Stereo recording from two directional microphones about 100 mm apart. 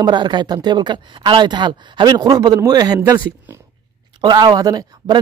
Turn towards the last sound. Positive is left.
turn(degrees=-40)  # may be behind; listen again after turning